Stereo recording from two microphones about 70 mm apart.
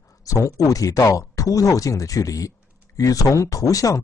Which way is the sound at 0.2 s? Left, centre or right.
Left.